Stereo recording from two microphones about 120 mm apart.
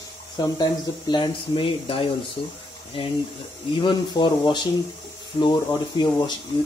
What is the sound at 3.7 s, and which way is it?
Speech, 40° left (ahead or behind).